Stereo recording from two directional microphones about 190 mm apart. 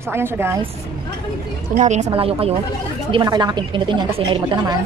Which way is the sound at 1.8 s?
35° right (ahead or behind).